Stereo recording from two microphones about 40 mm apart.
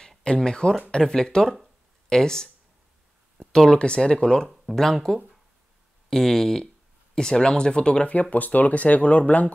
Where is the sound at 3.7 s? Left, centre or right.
Left.